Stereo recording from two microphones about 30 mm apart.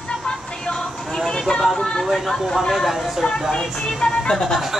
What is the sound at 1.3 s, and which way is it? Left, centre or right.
Speech, left.